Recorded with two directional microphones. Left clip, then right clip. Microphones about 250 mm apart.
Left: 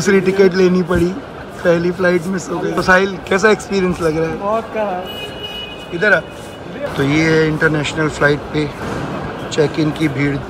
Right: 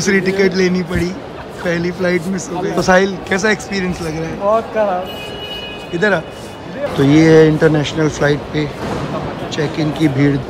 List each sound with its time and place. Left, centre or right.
0.0 s speech: centre
5.9 s speech: centre
9.6 s speech: centre